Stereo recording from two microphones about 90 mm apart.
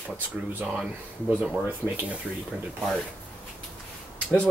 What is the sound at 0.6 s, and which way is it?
Speech, 5° right (ahead or behind).